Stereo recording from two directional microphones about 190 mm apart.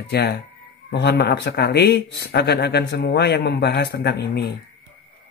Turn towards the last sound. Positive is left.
turn(degrees=60)  # may be behind; listen again after turning